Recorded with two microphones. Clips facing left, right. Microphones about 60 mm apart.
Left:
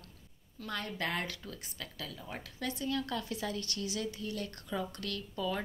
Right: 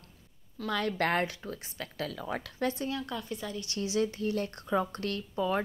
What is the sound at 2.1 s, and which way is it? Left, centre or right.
Speech, right.